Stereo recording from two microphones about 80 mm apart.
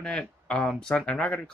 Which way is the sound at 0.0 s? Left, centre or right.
Centre.